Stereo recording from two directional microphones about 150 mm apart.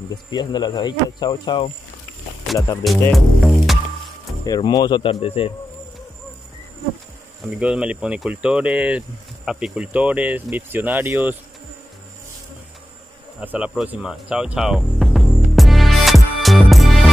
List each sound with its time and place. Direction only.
0.1 s speech: 30° left (ahead or behind)
3.1 s music: centre (ahead or behind)
4.5 s speech: 30° left (ahead or behind)
7.4 s speech: 5° right (ahead or behind)
13.4 s music: 10° right (ahead or behind)